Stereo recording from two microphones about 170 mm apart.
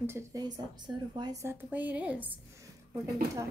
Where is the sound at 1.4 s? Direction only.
10° right (ahead or behind).